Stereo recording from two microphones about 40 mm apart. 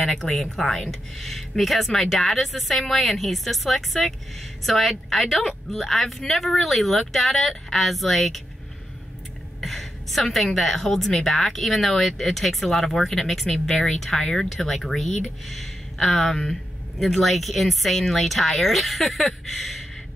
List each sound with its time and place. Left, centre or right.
0.2 s a woman's voice: centre
9.6 s a woman's voice: centre